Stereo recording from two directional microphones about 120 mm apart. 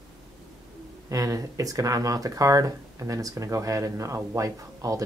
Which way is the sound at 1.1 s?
30° right (ahead or behind).